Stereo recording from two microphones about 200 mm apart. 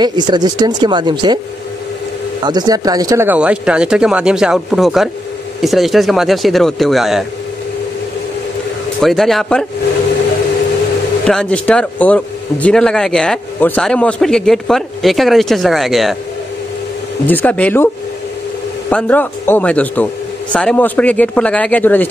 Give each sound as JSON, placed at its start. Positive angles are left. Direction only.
{"t": 0.0, "sound": "speech", "side_deg": -20}
{"t": 2.4, "sound": "speech", "side_deg": -20}
{"t": 9.0, "sound": "speech", "side_deg": 0}
{"t": 11.2, "sound": "speech", "side_deg": 5}
{"t": 17.3, "sound": "speech", "side_deg": 10}
{"t": 18.9, "sound": "speech", "side_deg": 5}